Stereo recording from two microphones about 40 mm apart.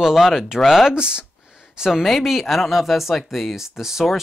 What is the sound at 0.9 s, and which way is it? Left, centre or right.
Speech, right.